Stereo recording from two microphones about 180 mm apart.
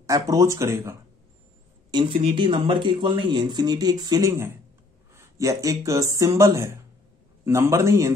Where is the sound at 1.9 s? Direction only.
30° right (ahead or behind).